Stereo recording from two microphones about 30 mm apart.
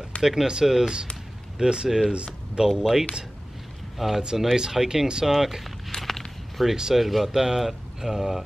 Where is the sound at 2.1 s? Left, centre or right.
Right.